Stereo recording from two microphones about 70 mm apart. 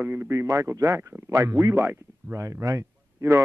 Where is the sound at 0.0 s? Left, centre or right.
Right.